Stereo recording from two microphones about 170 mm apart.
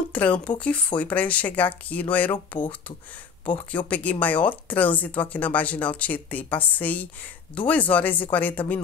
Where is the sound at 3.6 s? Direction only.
10° left (ahead or behind).